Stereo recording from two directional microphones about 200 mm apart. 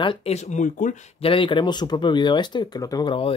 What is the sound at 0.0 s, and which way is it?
Speech, 30° left (ahead or behind).